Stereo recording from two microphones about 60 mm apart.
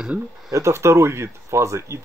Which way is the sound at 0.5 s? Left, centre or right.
Right.